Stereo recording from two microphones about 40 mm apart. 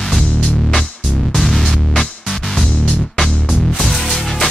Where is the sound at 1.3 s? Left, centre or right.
Centre.